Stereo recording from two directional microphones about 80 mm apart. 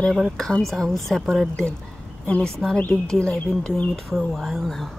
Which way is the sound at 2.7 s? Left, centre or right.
Centre.